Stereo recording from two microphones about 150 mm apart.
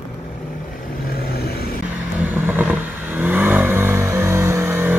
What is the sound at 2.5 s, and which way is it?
Vehicle, 10° right (ahead or behind).